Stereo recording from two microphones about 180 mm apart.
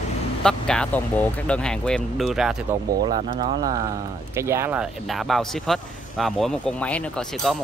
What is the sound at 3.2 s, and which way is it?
Speech, 35° right (ahead or behind).